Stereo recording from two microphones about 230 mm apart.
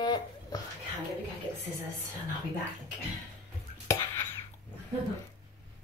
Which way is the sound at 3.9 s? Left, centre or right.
Centre.